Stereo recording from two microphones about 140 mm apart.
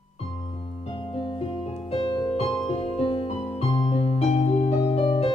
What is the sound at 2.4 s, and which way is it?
Music, 40° left (ahead or behind).